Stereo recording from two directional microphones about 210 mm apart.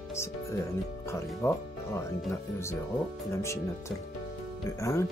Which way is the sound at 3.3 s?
15° left (ahead or behind).